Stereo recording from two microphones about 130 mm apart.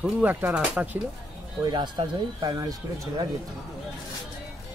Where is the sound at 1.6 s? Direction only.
35° right (ahead or behind).